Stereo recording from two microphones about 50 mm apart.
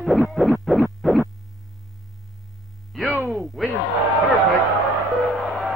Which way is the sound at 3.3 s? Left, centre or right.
Centre.